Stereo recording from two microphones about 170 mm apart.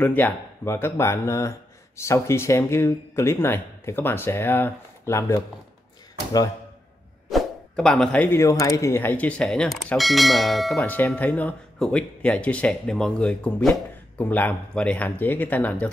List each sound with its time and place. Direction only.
0.0 s speech: 10° left (ahead or behind)
7.2 s speech: centre (ahead or behind)